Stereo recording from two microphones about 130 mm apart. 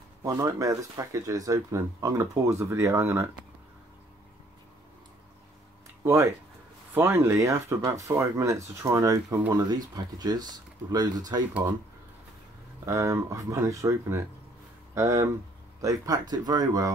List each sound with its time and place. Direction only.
0.2 s speech: 25° right (ahead or behind)
6.0 s speech: 20° right (ahead or behind)
12.8 s speech: 25° right (ahead or behind)